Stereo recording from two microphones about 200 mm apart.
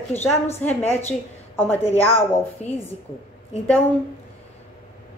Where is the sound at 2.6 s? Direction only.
35° left (ahead or behind).